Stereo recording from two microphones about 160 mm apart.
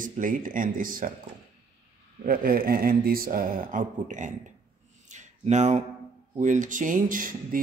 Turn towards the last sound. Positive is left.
turn(degrees=-60)  # may be behind; listen again after turning